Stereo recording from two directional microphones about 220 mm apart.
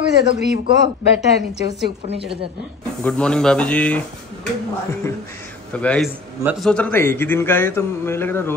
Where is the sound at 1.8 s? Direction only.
50° right (ahead or behind).